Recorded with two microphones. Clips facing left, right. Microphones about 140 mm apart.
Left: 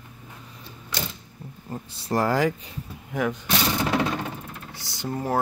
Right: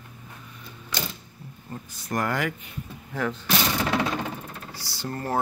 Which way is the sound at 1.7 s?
30° left (ahead or behind).